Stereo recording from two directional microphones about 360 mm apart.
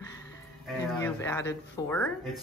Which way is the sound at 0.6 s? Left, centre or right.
Centre.